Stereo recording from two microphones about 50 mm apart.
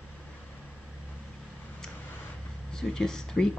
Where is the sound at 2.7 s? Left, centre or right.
Centre.